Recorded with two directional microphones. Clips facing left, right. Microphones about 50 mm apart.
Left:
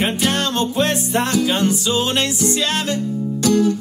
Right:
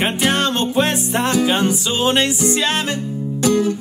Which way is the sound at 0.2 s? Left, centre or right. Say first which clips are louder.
Right 2 dB; right.